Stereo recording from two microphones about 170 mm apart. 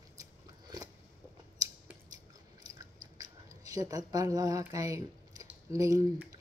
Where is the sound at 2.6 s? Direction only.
20° right (ahead or behind).